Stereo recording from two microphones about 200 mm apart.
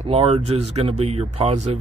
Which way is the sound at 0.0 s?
30° right (ahead or behind).